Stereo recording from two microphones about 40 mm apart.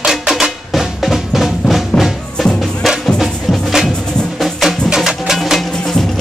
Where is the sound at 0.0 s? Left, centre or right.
Centre.